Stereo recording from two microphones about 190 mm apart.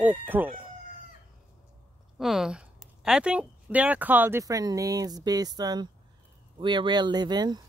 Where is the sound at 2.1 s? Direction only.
Centre (ahead or behind).